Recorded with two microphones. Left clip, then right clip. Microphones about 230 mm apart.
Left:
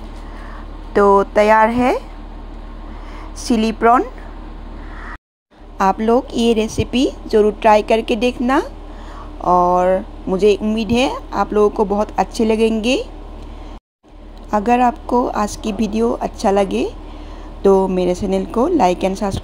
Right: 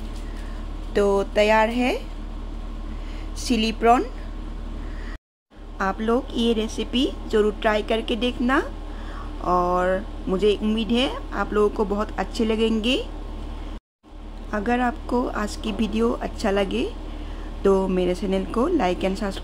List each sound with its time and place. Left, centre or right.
0.9 s speech: centre
3.4 s speech: centre
5.8 s speech: centre
14.5 s speech: centre